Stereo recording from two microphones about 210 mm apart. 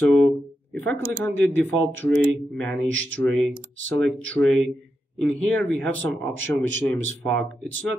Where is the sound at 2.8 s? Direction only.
65° right (ahead or behind).